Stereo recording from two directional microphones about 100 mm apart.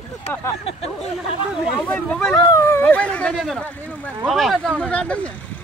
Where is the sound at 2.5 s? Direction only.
25° left (ahead or behind).